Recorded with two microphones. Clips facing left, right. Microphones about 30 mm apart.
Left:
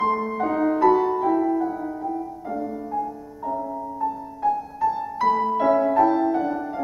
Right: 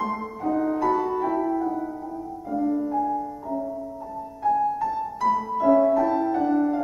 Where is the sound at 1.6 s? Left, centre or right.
Centre.